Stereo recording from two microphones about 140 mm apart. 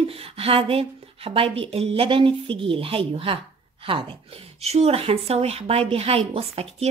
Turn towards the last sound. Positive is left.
turn(degrees=-45)  # may be behind; listen again after turning